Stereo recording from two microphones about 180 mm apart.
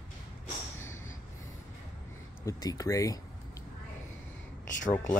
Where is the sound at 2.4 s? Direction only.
20° left (ahead or behind).